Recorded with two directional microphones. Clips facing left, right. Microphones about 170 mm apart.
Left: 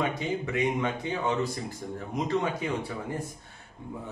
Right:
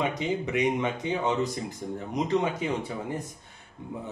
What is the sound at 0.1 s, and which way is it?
A man's voice, 20° right (ahead or behind).